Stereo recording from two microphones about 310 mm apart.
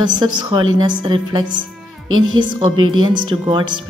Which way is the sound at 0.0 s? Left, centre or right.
Centre.